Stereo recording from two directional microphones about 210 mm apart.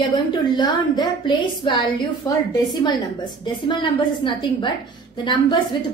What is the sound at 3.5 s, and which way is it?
A woman's voice, 20° left (ahead or behind).